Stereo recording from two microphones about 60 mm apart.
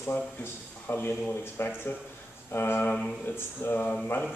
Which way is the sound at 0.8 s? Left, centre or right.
Left.